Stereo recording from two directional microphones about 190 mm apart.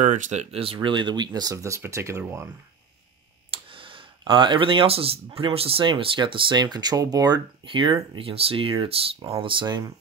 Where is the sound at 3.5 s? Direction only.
25° right (ahead or behind).